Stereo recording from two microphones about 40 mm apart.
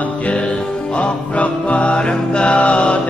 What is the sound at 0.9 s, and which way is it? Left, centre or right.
Music, left.